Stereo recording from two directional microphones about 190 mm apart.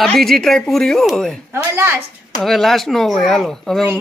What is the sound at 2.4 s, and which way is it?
Speech, centre (ahead or behind).